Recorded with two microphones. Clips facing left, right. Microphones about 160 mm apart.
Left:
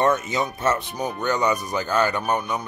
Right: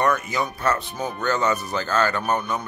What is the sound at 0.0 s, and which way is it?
Speech, 25° left (ahead or behind).